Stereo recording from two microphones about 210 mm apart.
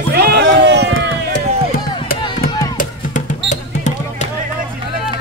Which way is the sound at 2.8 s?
35° left (ahead or behind).